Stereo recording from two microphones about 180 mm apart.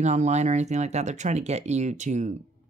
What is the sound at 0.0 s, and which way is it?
Speech, 40° right (ahead or behind).